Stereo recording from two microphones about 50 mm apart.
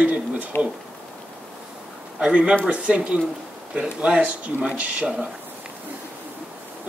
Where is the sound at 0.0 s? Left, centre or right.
Right.